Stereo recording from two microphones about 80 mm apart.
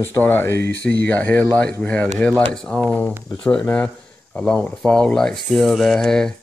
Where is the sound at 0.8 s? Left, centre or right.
Centre.